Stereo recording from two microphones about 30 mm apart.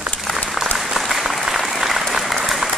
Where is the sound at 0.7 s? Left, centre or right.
Centre.